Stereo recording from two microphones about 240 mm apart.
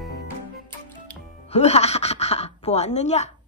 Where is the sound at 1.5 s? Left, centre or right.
Left.